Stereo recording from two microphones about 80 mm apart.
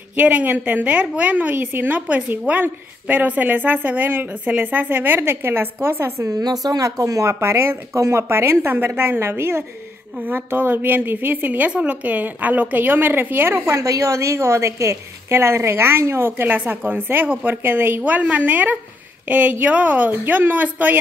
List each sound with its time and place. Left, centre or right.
0.1 s a woman's voice: centre; by 6.3 s right
6.3 s a woman's voice: right